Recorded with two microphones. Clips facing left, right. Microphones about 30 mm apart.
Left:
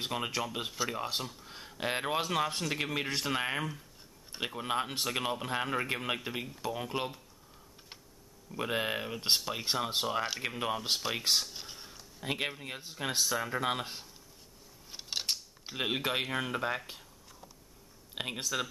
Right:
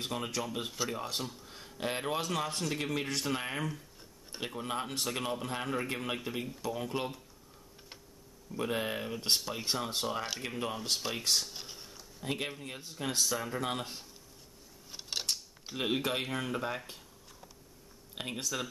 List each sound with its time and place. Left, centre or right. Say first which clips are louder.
0.0 s speech: left 2 dB; left
8.5 s speech: left 1 dB; centre
10.6 s speech: left 2 dB; centre
11.0 s speech: left 2 dB; centre
11.4 s a sound: even; centre
12.2 s speech: left 2 dB; centre
18.1 s speech: left 2 dB; centre